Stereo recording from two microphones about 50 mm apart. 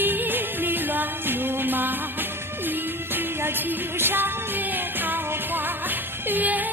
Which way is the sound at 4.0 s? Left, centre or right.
Right.